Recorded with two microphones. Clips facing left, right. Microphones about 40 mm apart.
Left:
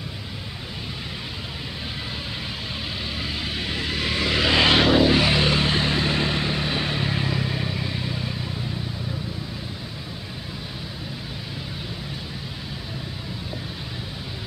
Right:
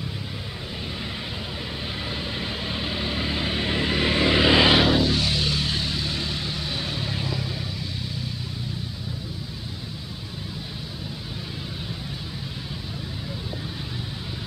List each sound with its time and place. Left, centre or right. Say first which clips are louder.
2.7 s vehicle: right 4 dB; centre
4.9 s vehicle: left 5 dB; left